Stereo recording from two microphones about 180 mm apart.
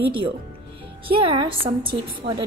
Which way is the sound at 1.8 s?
55° right (ahead or behind).